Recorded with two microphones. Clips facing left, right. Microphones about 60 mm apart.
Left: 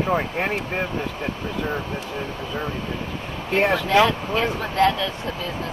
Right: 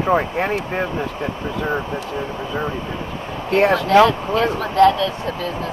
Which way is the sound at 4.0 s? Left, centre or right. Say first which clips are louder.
Right 5 dB; centre.